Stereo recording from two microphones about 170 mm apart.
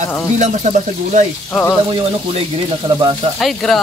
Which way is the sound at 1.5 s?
5° left (ahead or behind).